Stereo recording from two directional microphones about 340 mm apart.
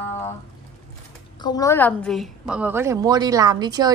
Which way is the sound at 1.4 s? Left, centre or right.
Centre.